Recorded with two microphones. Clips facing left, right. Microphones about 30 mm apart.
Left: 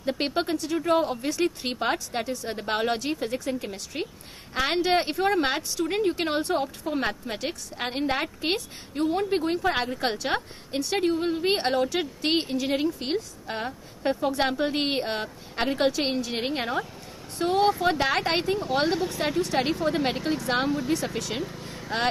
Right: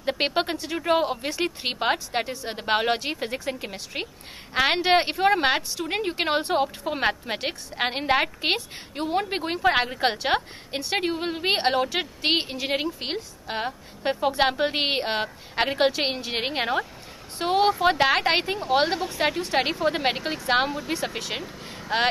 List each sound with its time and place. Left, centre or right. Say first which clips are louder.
0.0 s speech: right 2 dB; right
17.5 s speech: right 2 dB; centre
19.4 s speech: right 1 dB; right